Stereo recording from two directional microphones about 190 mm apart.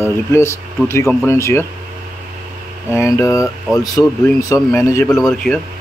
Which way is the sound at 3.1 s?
15° left (ahead or behind).